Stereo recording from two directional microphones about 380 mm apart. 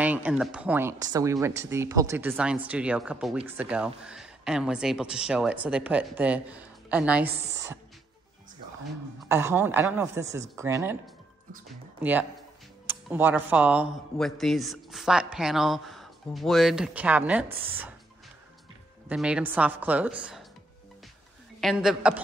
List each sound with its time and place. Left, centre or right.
0.0 s speech: centre
9.3 s speech: centre
12.0 s speech: centre
19.0 s speech: centre
21.5 s speech: centre